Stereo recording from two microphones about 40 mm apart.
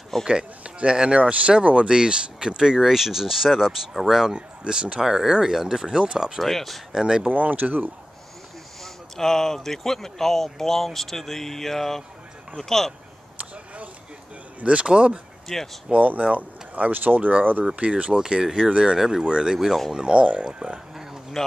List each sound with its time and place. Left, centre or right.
0.2 s speech: right
1.9 s speech: right
6.4 s speech: centre
6.9 s speech: centre
7.2 s speech: right
8.8 s speech: centre
14.6 s speech: right
15.4 s speech: centre
15.9 s speech: right
17.7 s speech: right
18.2 s speech: centre
20.9 s a sound: centre